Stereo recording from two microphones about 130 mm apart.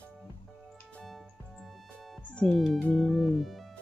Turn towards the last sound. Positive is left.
turn(degrees=0)  # may be behind; listen again after turning